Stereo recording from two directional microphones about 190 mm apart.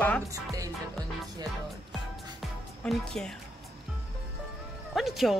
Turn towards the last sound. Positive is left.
turn(degrees=0)  # may be behind; listen again after turning